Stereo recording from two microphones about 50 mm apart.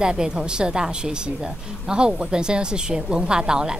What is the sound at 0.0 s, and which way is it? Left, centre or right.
A woman's voice, centre.